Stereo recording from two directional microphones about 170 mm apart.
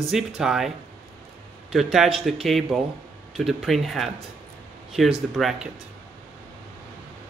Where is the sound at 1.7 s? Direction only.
Centre (ahead or behind).